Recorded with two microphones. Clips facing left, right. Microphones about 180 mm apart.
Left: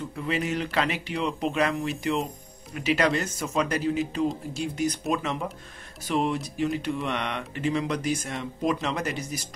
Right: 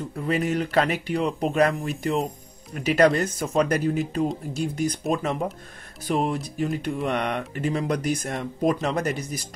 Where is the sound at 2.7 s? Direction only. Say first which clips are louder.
Right 5 dB; 45° right (ahead or behind).